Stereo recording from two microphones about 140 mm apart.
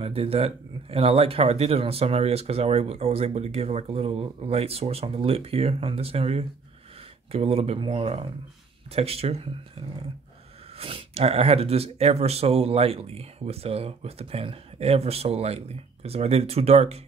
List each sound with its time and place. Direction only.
0.0 s speech: 45° right (ahead or behind)